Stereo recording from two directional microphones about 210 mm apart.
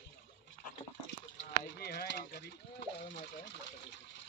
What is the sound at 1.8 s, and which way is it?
Speech, 50° left (ahead or behind).